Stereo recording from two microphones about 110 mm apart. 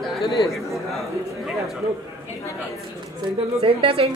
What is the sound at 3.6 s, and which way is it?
Speech, 60° right (ahead or behind).